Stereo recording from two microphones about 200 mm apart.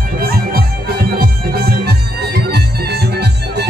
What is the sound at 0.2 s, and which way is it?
Music, 50° right (ahead or behind).